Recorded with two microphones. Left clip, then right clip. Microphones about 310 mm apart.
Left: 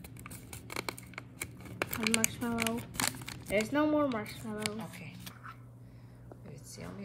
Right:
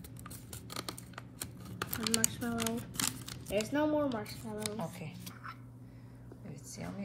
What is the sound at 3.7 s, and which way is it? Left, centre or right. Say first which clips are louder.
Speech: left 2 dB; left.